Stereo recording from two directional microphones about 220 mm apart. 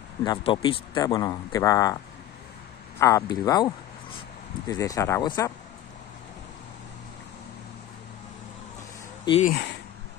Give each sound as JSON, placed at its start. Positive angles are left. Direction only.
{"t": 0.2, "sound": "speech", "side_deg": 20}
{"t": 3.0, "sound": "speech", "side_deg": 15}
{"t": 9.2, "sound": "speech", "side_deg": 25}